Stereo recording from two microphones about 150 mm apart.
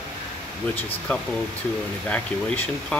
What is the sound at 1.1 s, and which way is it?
Speech, 10° left (ahead or behind).